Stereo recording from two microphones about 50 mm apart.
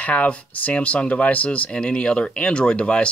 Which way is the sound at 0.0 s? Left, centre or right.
Left.